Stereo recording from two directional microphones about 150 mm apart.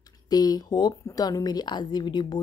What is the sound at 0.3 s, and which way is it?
Speech, 25° left (ahead or behind).